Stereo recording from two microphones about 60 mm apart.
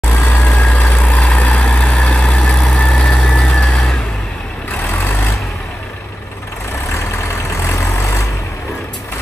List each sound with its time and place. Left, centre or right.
0.1 s vehicle: left; by 4.0 s centre
4.7 s vehicle: left
6.9 s vehicle: left